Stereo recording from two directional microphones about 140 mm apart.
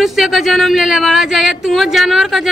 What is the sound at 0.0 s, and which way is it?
Speech, centre (ahead or behind).